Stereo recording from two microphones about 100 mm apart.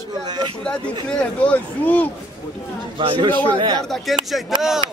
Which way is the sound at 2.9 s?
55° right (ahead or behind).